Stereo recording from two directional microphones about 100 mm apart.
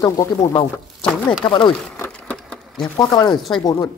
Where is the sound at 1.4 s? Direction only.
60° left (ahead or behind).